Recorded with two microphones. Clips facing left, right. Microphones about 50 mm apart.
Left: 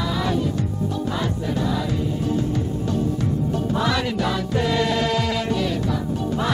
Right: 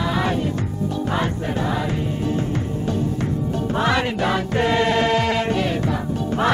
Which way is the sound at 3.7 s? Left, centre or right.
Right.